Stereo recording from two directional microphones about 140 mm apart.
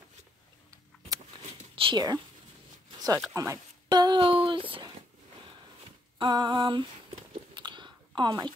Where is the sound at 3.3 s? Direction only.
25° right (ahead or behind).